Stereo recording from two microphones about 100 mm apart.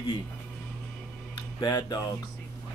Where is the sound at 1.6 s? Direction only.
40° left (ahead or behind).